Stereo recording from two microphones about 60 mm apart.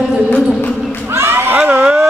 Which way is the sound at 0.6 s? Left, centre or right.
Left.